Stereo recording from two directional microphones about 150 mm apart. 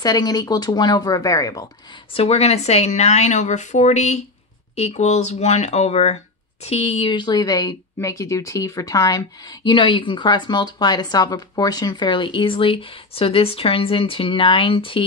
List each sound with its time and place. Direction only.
0.0 s speech: 25° left (ahead or behind)
2.1 s a woman's voice: 45° left (ahead or behind)